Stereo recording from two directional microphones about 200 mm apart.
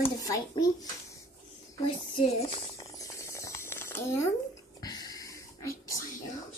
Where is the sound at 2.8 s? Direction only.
15° left (ahead or behind).